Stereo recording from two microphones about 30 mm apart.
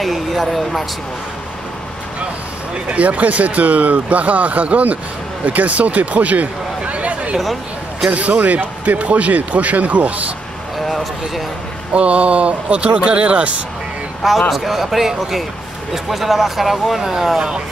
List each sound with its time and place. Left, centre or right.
0.0 s speech: centre
2.9 s speech: right
5.4 s speech: right
8.9 s speech: right
11.9 s speech: right
14.5 s speech: centre
17.0 s speech: centre